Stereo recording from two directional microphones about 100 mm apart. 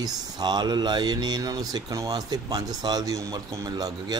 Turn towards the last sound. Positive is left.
turn(degrees=-35)  # may be behind; listen again after turning